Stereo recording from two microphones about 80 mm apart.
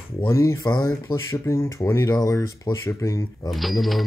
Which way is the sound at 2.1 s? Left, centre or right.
Left.